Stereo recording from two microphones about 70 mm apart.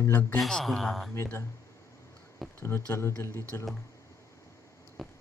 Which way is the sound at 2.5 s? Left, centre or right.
Left.